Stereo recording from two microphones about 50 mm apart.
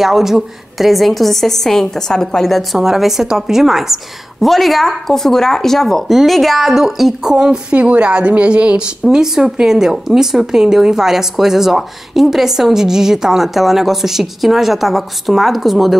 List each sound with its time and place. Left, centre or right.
0.0 s a woman's voice: centre
7.7 s a woman's voice: right
9.1 s speech: centre